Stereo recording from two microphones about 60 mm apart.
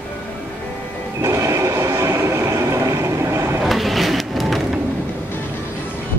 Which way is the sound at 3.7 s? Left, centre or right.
Centre.